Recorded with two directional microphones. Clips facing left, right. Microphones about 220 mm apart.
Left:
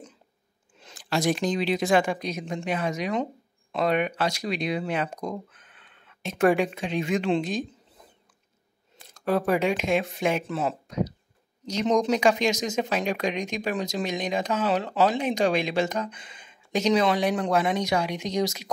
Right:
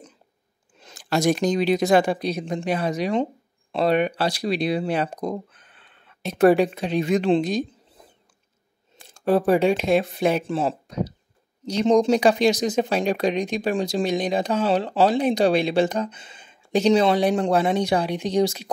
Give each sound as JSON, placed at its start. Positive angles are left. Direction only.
{"t": 0.8, "sound": "speech", "side_deg": -45}
{"t": 9.0, "sound": "speech", "side_deg": -30}